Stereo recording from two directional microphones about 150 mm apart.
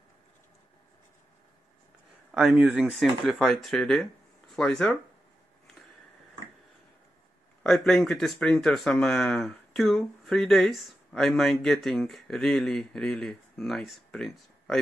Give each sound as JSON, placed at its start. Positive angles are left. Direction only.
{"t": 2.3, "sound": "speech", "side_deg": -5}
{"t": 7.6, "sound": "speech", "side_deg": 5}